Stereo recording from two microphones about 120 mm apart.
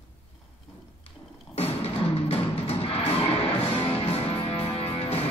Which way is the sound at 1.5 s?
55° left (ahead or behind).